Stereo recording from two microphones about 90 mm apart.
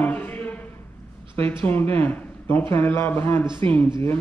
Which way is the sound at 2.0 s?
25° left (ahead or behind).